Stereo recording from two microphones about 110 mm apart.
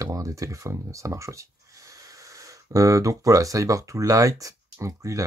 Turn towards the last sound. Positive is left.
turn(degrees=-30)  # may be behind; listen again after turning